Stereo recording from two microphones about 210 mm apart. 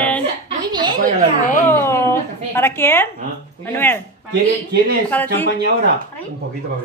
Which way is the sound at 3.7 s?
10° left (ahead or behind).